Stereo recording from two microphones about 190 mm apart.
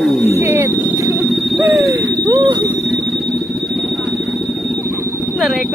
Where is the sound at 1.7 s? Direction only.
20° right (ahead or behind).